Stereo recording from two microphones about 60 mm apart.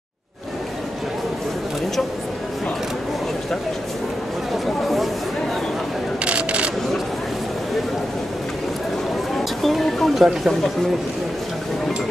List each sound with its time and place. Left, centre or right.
4.6 s chatter: centre
6.2 s a sound: right
9.4 s speech: centre